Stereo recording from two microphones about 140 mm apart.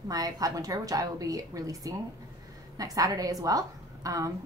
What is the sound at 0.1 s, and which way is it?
A woman's voice, 25° right (ahead or behind).